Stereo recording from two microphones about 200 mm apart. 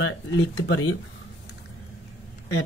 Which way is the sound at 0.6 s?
90° left.